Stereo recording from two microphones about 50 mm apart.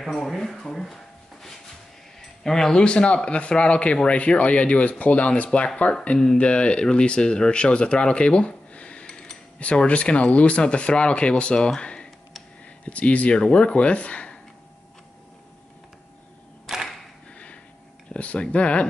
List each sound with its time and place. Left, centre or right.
0.0 s speech: centre
2.4 s speech: centre
16.7 s a sound: centre
18.1 s speech: left